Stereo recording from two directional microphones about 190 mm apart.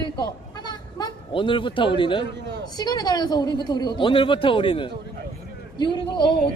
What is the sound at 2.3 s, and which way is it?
Speech, 65° right (ahead or behind).